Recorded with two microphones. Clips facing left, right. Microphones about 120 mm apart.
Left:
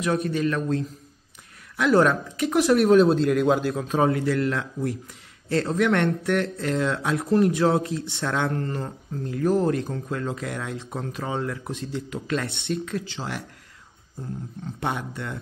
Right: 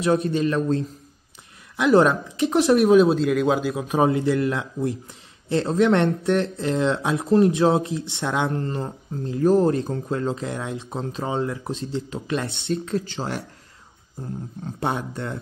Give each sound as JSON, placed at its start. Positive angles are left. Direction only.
{"t": 0.0, "sound": "a man's voice", "side_deg": -30}
{"t": 2.9, "sound": "a man's voice", "side_deg": -5}
{"t": 3.8, "sound": "a man's voice", "side_deg": -15}
{"t": 14.8, "sound": "speech", "side_deg": -30}